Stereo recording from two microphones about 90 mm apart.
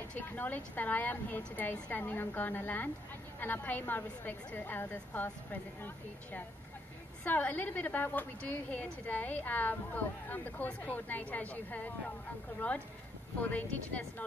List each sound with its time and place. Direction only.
0.1 s a woman's voice: 20° left (ahead or behind)